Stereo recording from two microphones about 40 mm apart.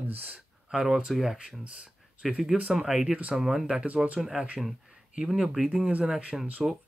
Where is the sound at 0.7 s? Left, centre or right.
Centre.